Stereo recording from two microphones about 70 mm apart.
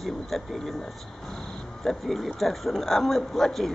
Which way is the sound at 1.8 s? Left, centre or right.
Centre.